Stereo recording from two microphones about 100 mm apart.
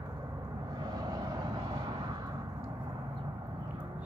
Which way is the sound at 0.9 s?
40° right (ahead or behind).